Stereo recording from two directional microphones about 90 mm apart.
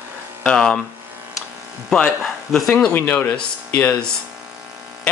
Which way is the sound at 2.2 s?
5° left (ahead or behind).